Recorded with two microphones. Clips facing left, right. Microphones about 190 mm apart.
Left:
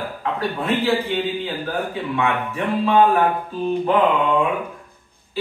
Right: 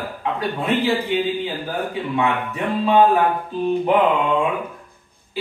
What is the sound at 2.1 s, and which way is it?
Music, 20° right (ahead or behind).